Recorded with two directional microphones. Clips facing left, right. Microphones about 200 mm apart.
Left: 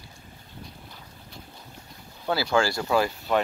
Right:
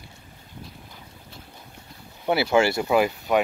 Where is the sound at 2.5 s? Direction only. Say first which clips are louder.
Right 3 dB; 20° right (ahead or behind).